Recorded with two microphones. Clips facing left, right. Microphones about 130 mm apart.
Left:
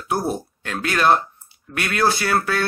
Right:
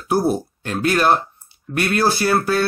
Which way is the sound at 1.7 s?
30° right (ahead or behind).